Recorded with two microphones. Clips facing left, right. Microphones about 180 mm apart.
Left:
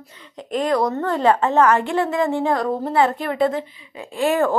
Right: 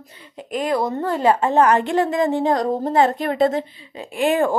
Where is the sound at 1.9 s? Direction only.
40° right (ahead or behind).